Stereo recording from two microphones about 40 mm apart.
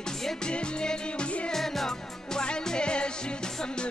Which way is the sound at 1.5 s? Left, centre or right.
Centre.